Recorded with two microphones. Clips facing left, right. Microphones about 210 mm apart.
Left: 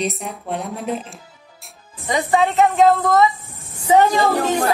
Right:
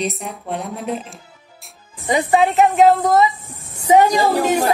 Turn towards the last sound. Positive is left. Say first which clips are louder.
# right 1 dB
turn(degrees=-10)  # may be behind; listen again after turning